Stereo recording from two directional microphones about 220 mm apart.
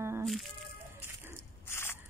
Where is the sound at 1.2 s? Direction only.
10° right (ahead or behind).